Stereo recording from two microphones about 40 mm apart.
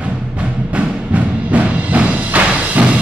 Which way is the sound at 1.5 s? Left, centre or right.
Right.